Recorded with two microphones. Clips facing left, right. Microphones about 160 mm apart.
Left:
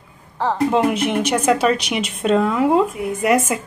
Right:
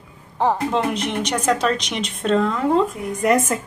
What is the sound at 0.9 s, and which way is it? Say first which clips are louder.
A woman's voice: left 4 dB; 5° left (ahead or behind).